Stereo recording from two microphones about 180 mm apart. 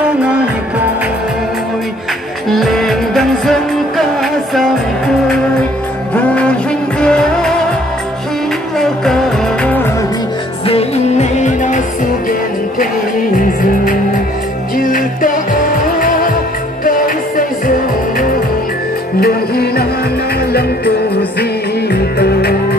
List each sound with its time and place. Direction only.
2.5 s music: centre (ahead or behind)
6.1 s music: 5° left (ahead or behind)
8.7 s music: centre (ahead or behind)
10.7 s music: 35° left (ahead or behind)
13.4 s music: 50° left (ahead or behind)
19.1 s music: 60° left (ahead or behind)
21.4 s music: 60° left (ahead or behind)